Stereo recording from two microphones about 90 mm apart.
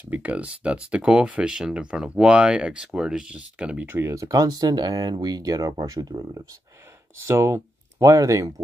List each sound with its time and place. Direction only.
0.0 s speech: 20° right (ahead or behind)
3.8 s speech: 25° right (ahead or behind); by 6.4 s 45° right (ahead or behind)
7.2 s speech: 30° right (ahead or behind)